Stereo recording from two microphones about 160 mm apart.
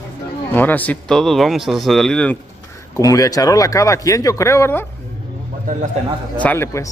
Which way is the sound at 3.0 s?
20° left (ahead or behind).